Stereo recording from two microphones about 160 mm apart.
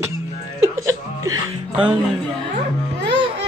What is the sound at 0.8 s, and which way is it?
Chuckle, 20° right (ahead or behind).